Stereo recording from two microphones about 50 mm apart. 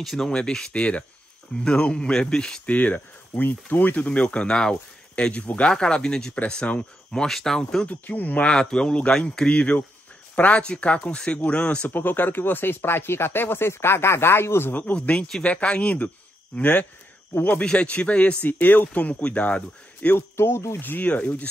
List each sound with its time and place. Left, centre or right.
0.0 s speech: centre
0.3 s speech: centre
2.6 s speech: left
7.2 s speech: centre
7.9 s speech: left
8.5 s speech: centre
11.9 s speech: left
14.7 s speech: left
15.1 s speech: centre
15.4 s speech: left
20.2 s speech: left
20.8 s speech: left
21.1 s speech: left